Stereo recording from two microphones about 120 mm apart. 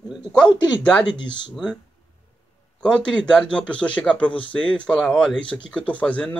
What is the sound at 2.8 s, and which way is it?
A man's voice, 10° left (ahead or behind).